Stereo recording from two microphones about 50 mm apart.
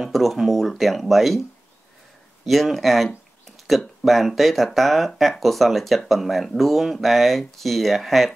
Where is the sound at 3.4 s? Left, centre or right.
Centre.